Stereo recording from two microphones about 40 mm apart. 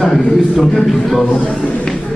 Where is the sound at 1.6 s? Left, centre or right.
Left.